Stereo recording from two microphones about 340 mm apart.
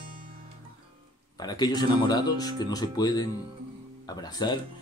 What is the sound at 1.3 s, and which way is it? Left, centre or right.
Speech, centre.